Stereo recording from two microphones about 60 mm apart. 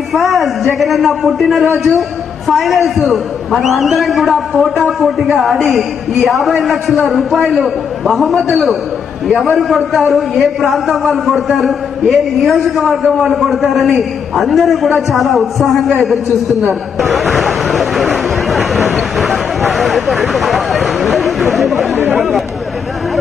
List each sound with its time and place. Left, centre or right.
0.1 s a man's voice: centre
16.6 s a sound: centre
21.5 s chatter: centre